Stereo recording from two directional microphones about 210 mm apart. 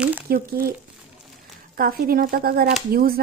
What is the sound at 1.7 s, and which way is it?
Speech, 45° right (ahead or behind).